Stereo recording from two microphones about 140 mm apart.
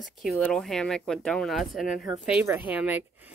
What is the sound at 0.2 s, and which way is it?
Speech, centre (ahead or behind).